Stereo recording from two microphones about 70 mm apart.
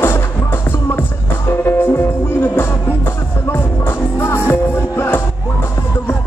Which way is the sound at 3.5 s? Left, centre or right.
Left.